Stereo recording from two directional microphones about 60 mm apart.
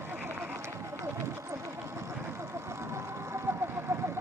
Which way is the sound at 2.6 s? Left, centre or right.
Right.